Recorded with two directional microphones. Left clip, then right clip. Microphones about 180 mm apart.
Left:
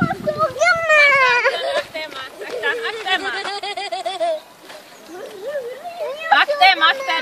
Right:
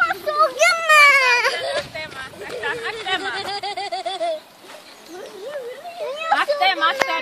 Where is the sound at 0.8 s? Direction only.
60° right (ahead or behind).